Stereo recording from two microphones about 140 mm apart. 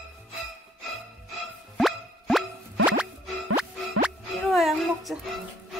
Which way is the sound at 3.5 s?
5° right (ahead or behind).